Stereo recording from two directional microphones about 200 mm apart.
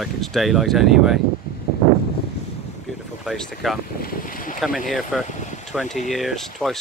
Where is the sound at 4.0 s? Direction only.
45° left (ahead or behind).